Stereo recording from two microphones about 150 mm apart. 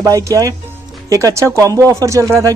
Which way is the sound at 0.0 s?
20° right (ahead or behind).